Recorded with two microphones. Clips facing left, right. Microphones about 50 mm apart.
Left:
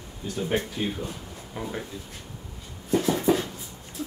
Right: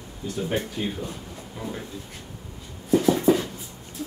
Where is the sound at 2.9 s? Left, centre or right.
Centre.